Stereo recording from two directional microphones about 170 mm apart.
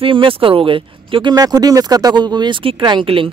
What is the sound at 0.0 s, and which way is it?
A man's voice, 30° right (ahead or behind).